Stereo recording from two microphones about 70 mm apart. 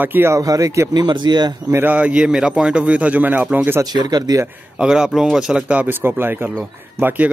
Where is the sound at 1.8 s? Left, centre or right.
Right.